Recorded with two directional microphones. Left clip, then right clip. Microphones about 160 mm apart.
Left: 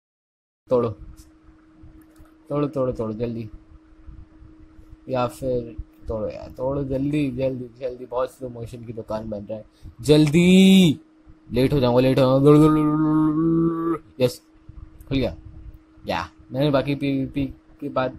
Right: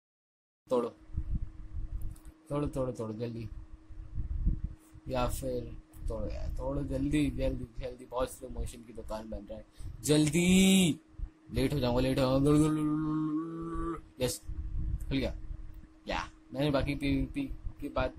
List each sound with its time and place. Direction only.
0.7 s speech: 15° left (ahead or behind)
2.4 s a man's voice: 15° left (ahead or behind)
5.0 s speech: 15° left (ahead or behind)